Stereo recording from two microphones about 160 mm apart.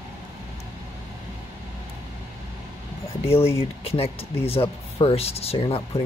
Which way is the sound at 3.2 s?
15° left (ahead or behind).